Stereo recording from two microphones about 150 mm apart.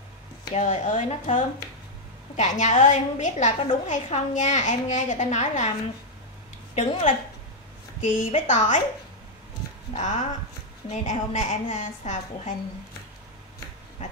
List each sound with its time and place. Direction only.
0.6 s a child's voice: 55° left (ahead or behind)
6.7 s a child's voice: 50° left (ahead or behind)
9.9 s a child's voice: 50° left (ahead or behind)